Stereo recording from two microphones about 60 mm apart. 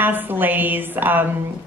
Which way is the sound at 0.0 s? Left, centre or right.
Right.